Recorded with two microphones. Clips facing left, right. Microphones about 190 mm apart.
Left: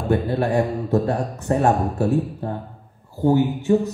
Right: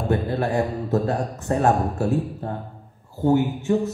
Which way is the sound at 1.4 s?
20° left (ahead or behind).